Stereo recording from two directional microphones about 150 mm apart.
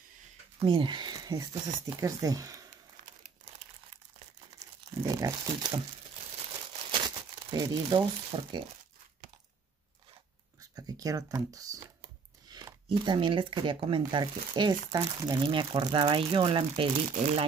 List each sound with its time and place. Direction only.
0.6 s speech: 35° right (ahead or behind)
5.0 s speech: 25° right (ahead or behind)
7.5 s speech: 25° right (ahead or behind)
10.8 s a sound: 25° right (ahead or behind)
12.8 s speech: 30° right (ahead or behind)